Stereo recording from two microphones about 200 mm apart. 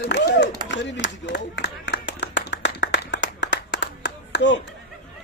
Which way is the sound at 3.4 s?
65° left (ahead or behind).